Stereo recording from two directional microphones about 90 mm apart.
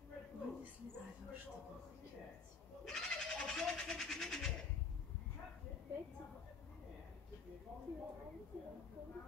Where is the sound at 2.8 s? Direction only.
5° left (ahead or behind).